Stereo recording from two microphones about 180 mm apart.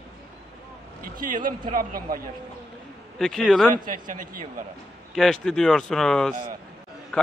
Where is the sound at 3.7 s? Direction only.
50° right (ahead or behind).